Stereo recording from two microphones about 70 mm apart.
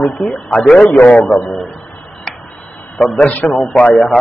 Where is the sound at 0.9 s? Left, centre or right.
Centre.